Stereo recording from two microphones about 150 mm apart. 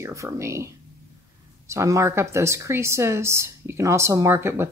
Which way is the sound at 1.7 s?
20° right (ahead or behind).